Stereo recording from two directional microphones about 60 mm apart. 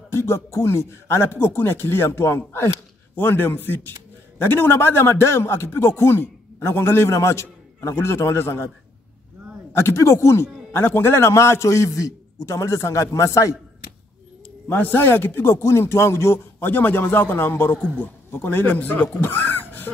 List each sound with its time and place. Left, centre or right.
0.1 s a man's voice: left
3.2 s a sound: left
4.4 s a man's voice: left
9.7 s a man's voice: left
10.7 s a man's voice: left
14.7 s a man's voice: left
16.7 s a sound: left
17.9 s speech: left